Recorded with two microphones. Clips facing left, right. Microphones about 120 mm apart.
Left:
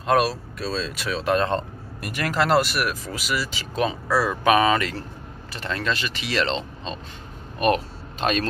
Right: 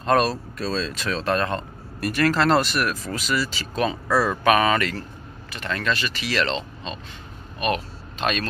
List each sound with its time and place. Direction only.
0.0 s speech: 5° left (ahead or behind)
4.1 s speech: 5° left (ahead or behind)
4.5 s speech: 15° left (ahead or behind)
5.5 s speech: 30° left (ahead or behind)